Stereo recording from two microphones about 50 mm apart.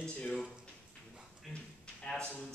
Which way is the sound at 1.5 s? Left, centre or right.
Centre.